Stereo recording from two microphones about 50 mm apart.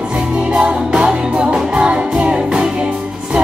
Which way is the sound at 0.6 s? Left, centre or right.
Centre.